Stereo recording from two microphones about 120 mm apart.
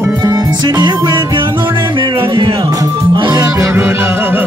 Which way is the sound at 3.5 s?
25° right (ahead or behind).